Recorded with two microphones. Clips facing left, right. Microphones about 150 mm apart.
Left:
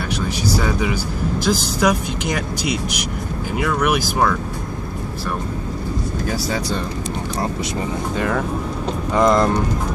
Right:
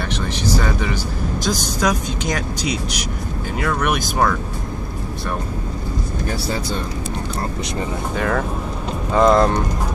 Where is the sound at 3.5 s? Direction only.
5° left (ahead or behind).